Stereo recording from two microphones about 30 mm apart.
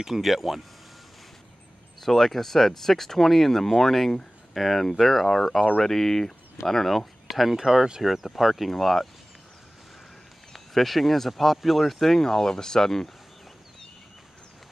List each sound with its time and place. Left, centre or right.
0.2 s speech: centre
2.0 s speech: centre
4.6 s speech: centre
6.9 s speech: centre
10.5 s speech: centre
12.3 s speech: centre